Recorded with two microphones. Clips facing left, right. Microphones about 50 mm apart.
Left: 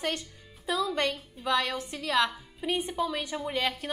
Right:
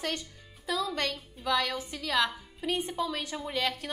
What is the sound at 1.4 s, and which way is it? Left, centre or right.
A woman's voice, centre.